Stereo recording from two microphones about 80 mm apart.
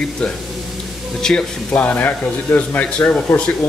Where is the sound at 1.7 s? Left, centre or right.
Left.